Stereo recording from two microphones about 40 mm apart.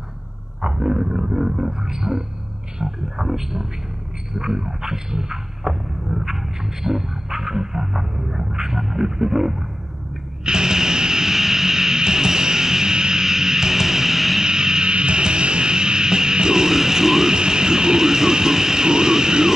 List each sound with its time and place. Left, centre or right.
0.6 s roaring cats: centre
2.8 s a sound: centre
10.4 s music: centre
14.5 s music: centre